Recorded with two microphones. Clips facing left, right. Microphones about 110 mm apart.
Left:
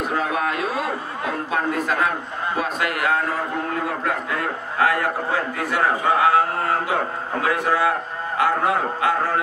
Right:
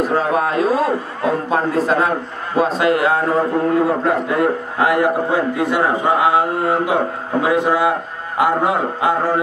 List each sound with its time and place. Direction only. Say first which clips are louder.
0.1 s a man's voice: right 6 dB; 35° right (ahead or behind); by 9.4 s 15° right (ahead or behind)